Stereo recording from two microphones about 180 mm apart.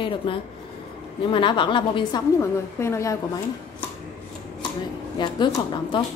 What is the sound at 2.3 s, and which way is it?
Speech, 15° left (ahead or behind).